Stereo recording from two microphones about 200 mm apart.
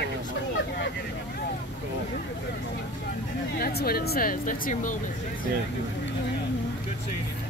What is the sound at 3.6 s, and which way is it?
Speech, 50° left (ahead or behind).